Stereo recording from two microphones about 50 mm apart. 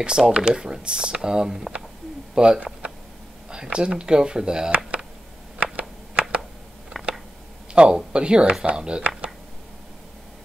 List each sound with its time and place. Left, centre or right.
0.0 s speech: centre
5.6 s a sound: right
7.7 s speech: centre